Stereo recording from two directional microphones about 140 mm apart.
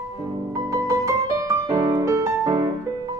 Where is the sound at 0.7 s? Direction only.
25° right (ahead or behind).